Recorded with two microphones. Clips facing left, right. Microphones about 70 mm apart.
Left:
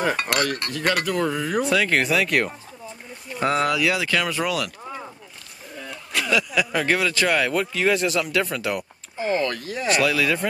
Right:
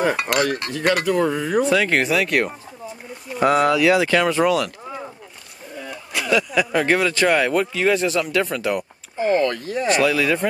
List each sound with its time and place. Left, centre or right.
0.0 s cutlery: centre
3.4 s speech: centre
4.5 s a sound: centre
5.8 s speech: centre
9.7 s cutlery: centre